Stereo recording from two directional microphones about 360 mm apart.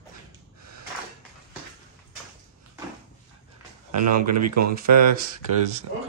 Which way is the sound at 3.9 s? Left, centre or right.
Right.